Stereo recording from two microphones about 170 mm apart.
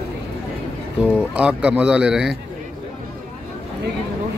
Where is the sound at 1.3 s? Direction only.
5° right (ahead or behind).